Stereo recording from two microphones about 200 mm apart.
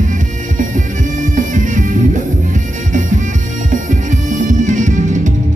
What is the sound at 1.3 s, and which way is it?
Music, 40° right (ahead or behind).